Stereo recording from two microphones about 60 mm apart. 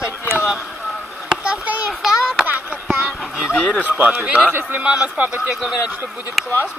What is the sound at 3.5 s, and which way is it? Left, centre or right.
Speech, centre.